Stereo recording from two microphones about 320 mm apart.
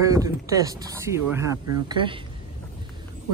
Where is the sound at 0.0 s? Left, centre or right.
Centre.